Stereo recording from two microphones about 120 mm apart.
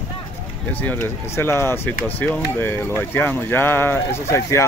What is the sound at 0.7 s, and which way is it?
Speech, 15° left (ahead or behind).